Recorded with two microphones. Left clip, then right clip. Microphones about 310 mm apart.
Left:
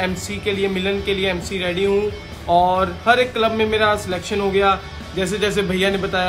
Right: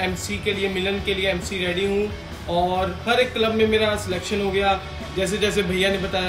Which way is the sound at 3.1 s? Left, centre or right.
Centre.